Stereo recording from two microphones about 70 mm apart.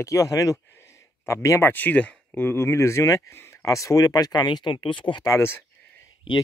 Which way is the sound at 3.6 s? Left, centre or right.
Left.